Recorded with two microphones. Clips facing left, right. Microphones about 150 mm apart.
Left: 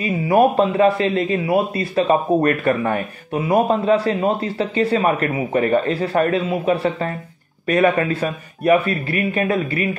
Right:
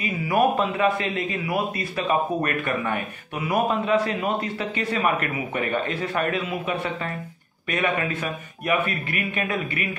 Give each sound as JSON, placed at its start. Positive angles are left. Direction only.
{"t": 0.0, "sound": "a man's voice", "side_deg": 30}